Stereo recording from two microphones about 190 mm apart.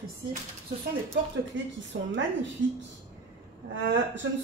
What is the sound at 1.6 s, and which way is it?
Speech, 75° right (ahead or behind).